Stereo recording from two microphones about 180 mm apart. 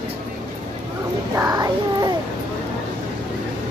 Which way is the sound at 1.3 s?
15° right (ahead or behind).